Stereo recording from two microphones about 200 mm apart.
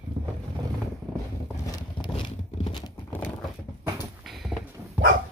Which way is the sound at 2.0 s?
25° left (ahead or behind).